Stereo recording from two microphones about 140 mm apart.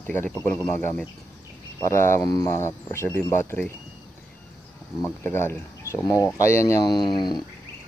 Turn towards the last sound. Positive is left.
turn(degrees=35)  # may be behind; listen again after turning